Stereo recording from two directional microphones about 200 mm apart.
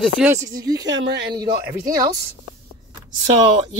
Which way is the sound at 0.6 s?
20° right (ahead or behind).